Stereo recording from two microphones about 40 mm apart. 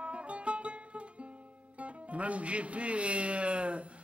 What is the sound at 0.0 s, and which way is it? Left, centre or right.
Music, right.